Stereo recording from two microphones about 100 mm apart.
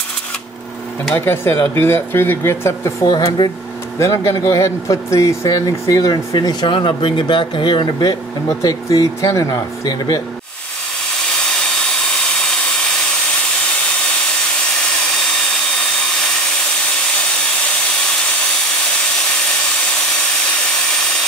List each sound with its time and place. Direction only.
1.1 s speech: 20° left (ahead or behind)
3.1 s speech: 45° left (ahead or behind)
4.0 s speech: 35° left (ahead or behind)
8.5 s speech: 35° left (ahead or behind)